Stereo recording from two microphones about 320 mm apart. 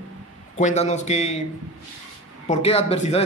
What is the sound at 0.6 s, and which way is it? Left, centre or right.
Speech, left.